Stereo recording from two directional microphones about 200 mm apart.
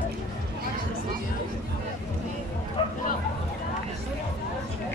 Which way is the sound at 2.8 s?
25° left (ahead or behind).